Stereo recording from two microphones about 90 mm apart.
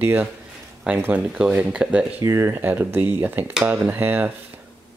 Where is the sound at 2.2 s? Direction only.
30° right (ahead or behind).